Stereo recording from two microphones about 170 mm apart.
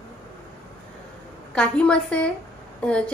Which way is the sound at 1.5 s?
5° left (ahead or behind).